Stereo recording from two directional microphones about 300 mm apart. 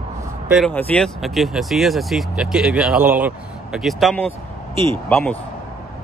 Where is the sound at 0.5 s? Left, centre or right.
Centre.